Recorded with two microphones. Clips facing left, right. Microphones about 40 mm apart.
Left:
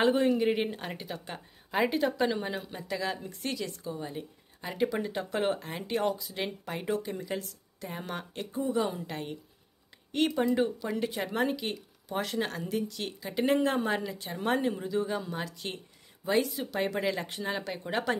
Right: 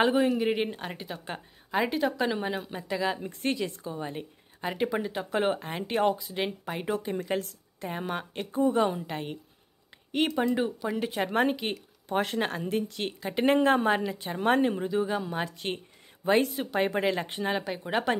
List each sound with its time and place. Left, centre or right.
0.0 s speech: centre
3.3 s speech: right
5.0 s speech: centre
5.6 s speech: right
6.4 s speech: centre
6.8 s speech: centre
7.2 s a woman's voice: right
7.9 s speech: centre
8.5 s speech: right
8.9 s speech: centre; by 14.9 s right
14.9 s speech: centre
15.3 s speech: right
17.6 s speech: centre